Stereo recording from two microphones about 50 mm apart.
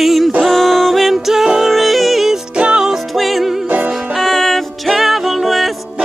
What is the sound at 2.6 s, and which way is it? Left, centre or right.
Music, centre.